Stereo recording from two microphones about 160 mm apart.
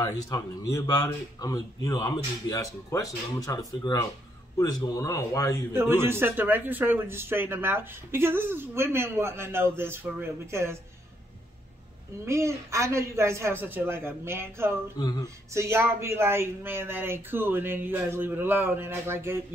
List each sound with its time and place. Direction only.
0.0 s a man's voice: 20° left (ahead or behind)
5.7 s a man's voice: 15° right (ahead or behind)
12.3 s a man's voice: 15° right (ahead or behind)
15.0 s a man's voice: 25° left (ahead or behind)
15.5 s a man's voice: 15° right (ahead or behind)